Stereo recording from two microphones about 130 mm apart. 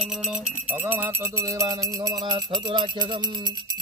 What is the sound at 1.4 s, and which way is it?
Music, 25° right (ahead or behind).